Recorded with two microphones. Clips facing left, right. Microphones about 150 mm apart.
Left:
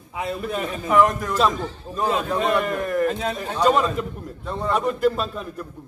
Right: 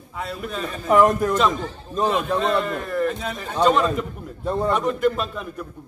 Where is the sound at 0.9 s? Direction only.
35° right (ahead or behind).